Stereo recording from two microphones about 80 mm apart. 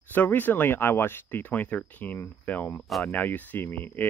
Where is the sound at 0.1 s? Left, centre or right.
Left.